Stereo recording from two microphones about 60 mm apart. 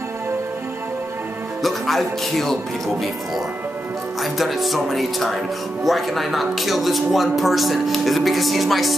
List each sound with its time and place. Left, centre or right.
1.6 s speech: centre
4.2 s speech: centre